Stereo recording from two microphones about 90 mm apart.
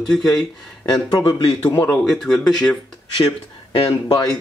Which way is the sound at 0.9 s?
45° left (ahead or behind).